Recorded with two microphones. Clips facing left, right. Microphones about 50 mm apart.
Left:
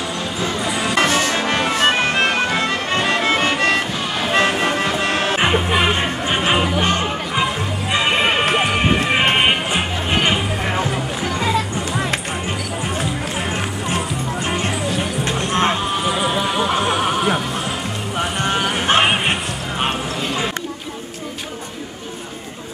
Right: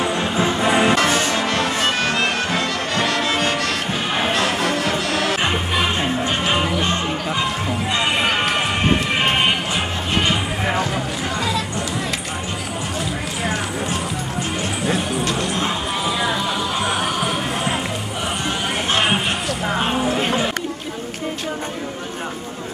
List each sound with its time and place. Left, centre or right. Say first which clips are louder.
0.0 s music: right 4 dB; right
1.5 s music: left 3 dB; left
15.5 s music: left 4 dB; left
18.4 s music: left 5 dB; left
20.2 s a sound: right 3 dB; right